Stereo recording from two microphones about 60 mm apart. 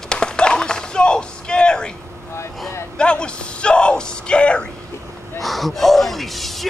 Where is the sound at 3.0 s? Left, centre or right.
Centre.